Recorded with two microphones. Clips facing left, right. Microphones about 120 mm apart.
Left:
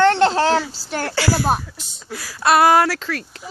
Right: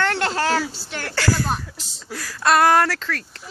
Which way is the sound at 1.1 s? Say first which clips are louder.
Left 3 dB; 10° left (ahead or behind).